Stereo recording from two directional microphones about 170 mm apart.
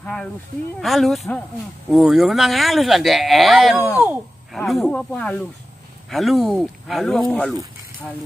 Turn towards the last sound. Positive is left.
turn(degrees=0)  # may be behind; listen again after turning